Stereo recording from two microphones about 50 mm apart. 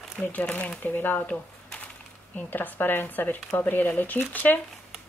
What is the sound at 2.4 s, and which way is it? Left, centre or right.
Speech, left.